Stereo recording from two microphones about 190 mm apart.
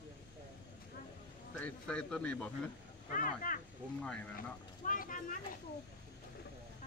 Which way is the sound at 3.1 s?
45° left (ahead or behind).